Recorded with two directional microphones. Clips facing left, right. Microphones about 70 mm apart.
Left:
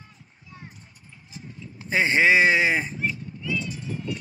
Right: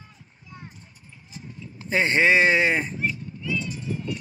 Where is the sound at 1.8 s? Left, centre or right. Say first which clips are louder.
Even; centre.